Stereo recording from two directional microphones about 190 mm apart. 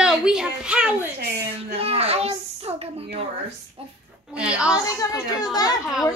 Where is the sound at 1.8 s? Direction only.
30° right (ahead or behind).